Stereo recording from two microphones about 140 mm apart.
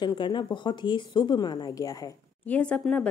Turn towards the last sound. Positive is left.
turn(degrees=10)  # may be behind; listen again after turning